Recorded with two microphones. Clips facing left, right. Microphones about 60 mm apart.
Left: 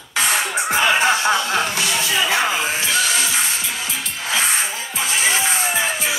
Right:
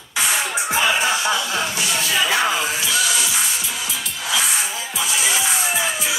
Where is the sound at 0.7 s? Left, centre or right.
Left.